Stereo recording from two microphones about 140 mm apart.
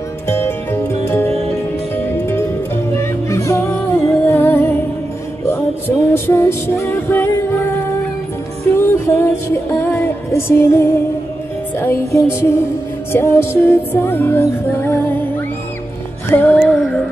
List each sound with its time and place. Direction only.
0.3 s music: 15° left (ahead or behind)
6.1 s music: 15° left (ahead or behind)
16.3 s music: 15° left (ahead or behind)
16.5 s music: 5° left (ahead or behind)